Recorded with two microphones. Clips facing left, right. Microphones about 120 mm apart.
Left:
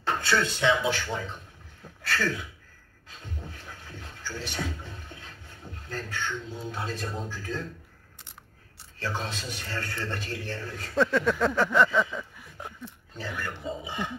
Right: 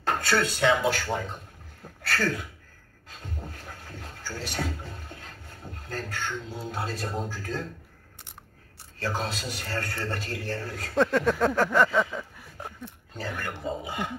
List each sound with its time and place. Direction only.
0.0 s a man's voice: 45° right (ahead or behind)
3.1 s music: 45° right (ahead or behind)
6.4 s speech: 5° right (ahead or behind)
6.7 s a man's voice: 40° right (ahead or behind)
9.0 s a man's voice: 40° right (ahead or behind)